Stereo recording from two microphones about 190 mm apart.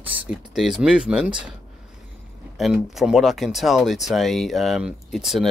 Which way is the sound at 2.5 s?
Centre (ahead or behind).